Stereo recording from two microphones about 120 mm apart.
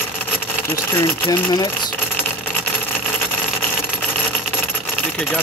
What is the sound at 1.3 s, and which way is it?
Speech, 35° left (ahead or behind).